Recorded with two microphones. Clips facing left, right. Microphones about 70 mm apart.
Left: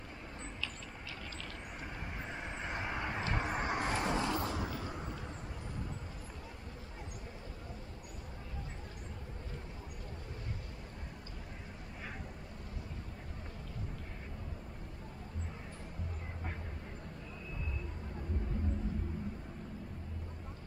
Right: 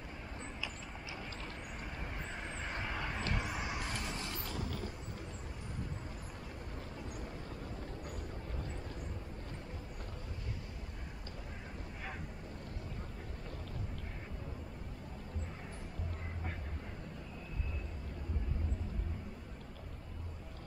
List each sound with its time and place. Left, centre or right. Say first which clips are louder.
2.3 s vehicle: left 3 dB; centre; by 3.6 s left
3.6 s vehicle: left 7 dB; left